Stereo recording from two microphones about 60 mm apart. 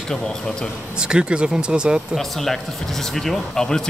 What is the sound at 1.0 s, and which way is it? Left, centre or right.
Speech, centre.